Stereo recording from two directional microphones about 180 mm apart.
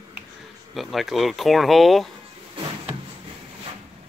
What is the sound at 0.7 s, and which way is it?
Speech, centre (ahead or behind).